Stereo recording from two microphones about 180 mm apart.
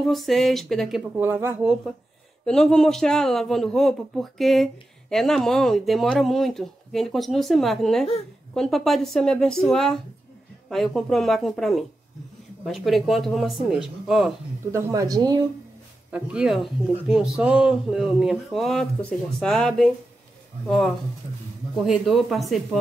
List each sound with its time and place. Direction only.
0.0 s speech: centre (ahead or behind)
1.1 s speech: 10° right (ahead or behind)
2.4 s speech: 5° left (ahead or behind)
14.7 s speech: 15° right (ahead or behind)
16.1 s speech: 5° right (ahead or behind)